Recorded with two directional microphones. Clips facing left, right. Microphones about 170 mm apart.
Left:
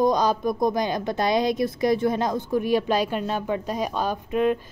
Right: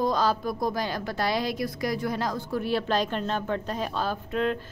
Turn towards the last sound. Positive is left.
turn(degrees=15)  # may be behind; listen again after turning